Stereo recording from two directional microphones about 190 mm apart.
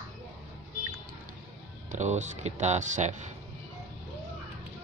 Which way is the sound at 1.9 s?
40° right (ahead or behind).